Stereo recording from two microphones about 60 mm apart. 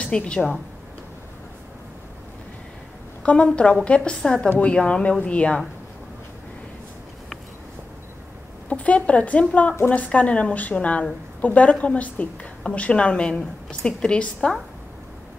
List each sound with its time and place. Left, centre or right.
0.0 s a woman's voice: centre
3.3 s a woman's voice: centre
8.6 s a woman's voice: left